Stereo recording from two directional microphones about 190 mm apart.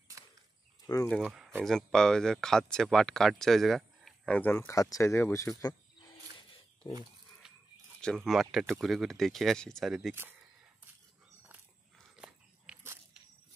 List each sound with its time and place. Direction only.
0.8 s speech: 15° left (ahead or behind)
1.1 s speech: 5° right (ahead or behind); by 6.0 s 20° left (ahead or behind)
7.4 s a sound: 5° right (ahead or behind)
8.0 s speech: centre (ahead or behind)
12.2 s biting: 10° right (ahead or behind)